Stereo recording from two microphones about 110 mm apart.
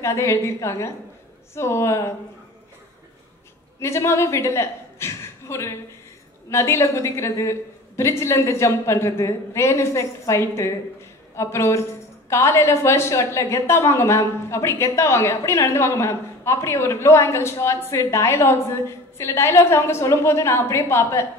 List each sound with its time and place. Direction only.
0.0 s a woman's voice: 25° left (ahead or behind)
3.8 s a woman's voice: 25° left (ahead or behind)